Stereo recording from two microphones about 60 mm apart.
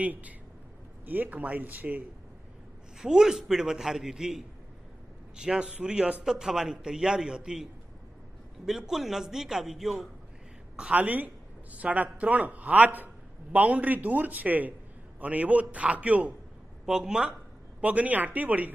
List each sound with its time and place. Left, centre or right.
0.0 s speech: right
3.0 s a man's voice: centre
8.6 s a man's voice: centre
10.8 s speech: right
16.8 s a sound: centre
17.8 s speech: right